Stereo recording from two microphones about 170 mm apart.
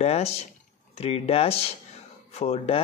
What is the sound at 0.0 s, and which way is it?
Speech, 40° left (ahead or behind).